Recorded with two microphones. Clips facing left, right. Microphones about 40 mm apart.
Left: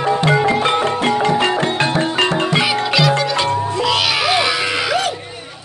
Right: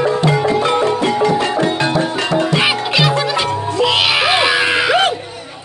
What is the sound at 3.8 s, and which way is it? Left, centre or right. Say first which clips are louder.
Music: right 6 dB; right.